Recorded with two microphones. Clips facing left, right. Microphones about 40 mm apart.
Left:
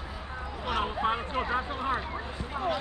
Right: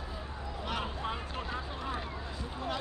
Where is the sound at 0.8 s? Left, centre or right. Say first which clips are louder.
Left 8 dB; left.